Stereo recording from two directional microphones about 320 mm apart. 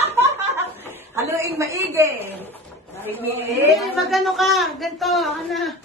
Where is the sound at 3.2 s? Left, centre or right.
Centre.